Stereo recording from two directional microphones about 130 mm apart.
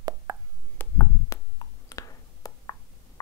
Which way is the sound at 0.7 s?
25° left (ahead or behind).